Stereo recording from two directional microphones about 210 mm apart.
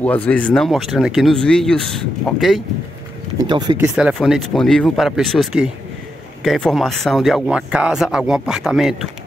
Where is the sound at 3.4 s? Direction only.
20° right (ahead or behind).